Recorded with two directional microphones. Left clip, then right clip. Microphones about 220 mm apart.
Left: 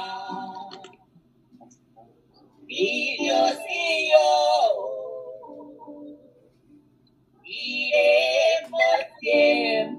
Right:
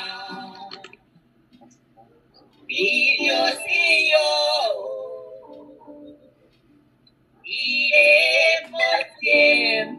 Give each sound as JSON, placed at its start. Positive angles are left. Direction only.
{"t": 0.0, "sound": "music", "side_deg": -20}
{"t": 2.6, "sound": "female singing", "side_deg": -20}
{"t": 3.6, "sound": "synthetic singing", "side_deg": -20}
{"t": 7.4, "sound": "synthetic singing", "side_deg": -20}